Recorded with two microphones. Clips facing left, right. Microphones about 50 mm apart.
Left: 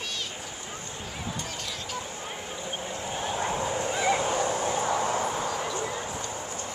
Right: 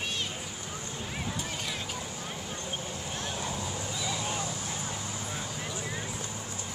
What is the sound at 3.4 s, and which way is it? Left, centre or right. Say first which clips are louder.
Bow-wow: left 7 dB; left.